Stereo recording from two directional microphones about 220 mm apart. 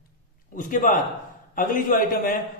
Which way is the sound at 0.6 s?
40° left (ahead or behind).